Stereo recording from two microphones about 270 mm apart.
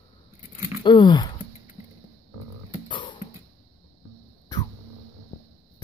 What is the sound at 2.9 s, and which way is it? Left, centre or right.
Music, centre.